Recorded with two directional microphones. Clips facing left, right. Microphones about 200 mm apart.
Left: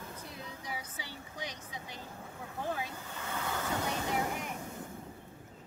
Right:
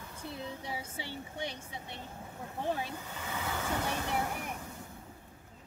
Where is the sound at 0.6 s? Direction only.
25° right (ahead or behind).